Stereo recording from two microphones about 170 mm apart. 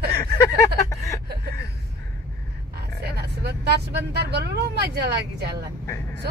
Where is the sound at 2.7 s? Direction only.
70° right (ahead or behind).